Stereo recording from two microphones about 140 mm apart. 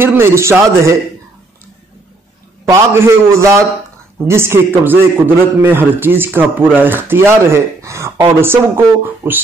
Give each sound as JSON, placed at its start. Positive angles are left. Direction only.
{"t": 0.0, "sound": "a man's voice", "side_deg": -15}
{"t": 2.7, "sound": "a man's voice", "side_deg": -20}